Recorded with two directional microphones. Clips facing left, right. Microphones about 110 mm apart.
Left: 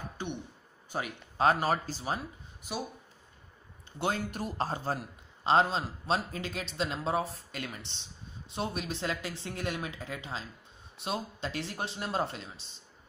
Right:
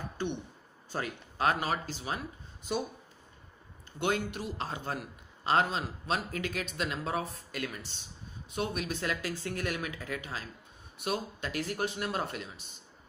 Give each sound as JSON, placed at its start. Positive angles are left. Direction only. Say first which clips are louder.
{"t": 0.2, "sound": "a sound", "louder": "right 4 dB", "side_deg": 15}
{"t": 0.8, "sound": "a man's voice", "louder": "even", "side_deg": 15}
{"t": 1.4, "sound": "speech", "louder": "left 3 dB", "side_deg": 35}
{"t": 4.0, "sound": "speech", "louder": "right 1 dB", "side_deg": 40}